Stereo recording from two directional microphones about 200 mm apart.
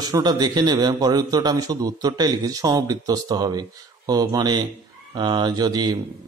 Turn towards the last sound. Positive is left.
turn(degrees=-20)  # may be behind; listen again after turning